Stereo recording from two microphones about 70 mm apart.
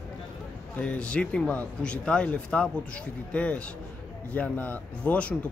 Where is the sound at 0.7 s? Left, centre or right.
Centre.